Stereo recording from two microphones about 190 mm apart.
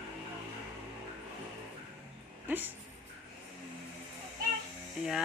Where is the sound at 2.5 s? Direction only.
10° right (ahead or behind).